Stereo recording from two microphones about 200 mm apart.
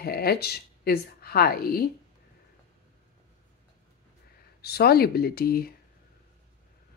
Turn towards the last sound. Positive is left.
turn(degrees=50)  # may be behind; listen again after turning